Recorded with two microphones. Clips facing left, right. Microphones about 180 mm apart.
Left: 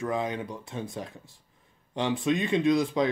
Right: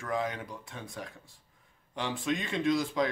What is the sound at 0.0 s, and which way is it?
Speech, 20° left (ahead or behind).